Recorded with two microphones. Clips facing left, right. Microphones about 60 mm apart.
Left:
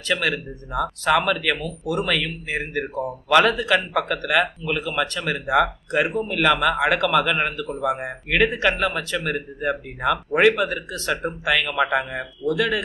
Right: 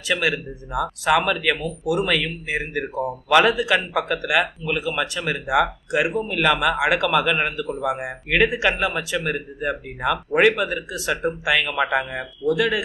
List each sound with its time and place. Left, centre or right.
0.1 s a man's voice: centre
12.0 s speech: right
12.4 s speech: centre